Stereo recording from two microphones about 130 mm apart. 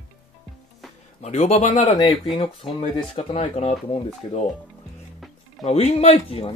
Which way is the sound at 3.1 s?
50° left (ahead or behind).